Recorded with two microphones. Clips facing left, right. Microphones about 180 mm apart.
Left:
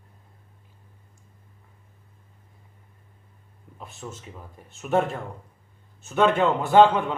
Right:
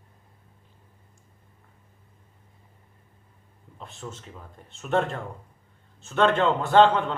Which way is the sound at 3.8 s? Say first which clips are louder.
Even; 5° left (ahead or behind).